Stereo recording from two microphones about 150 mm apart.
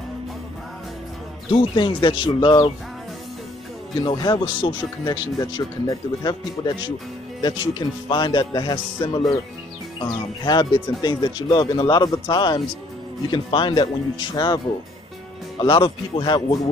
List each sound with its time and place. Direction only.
1.5 s speech: 35° left (ahead or behind)
4.0 s speech: 25° left (ahead or behind)
10.4 s speech: 30° left (ahead or behind)
15.6 s speech: 30° left (ahead or behind)